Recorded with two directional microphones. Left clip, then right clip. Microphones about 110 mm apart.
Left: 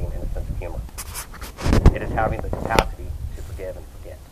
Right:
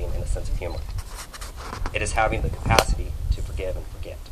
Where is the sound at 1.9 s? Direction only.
30° right (ahead or behind).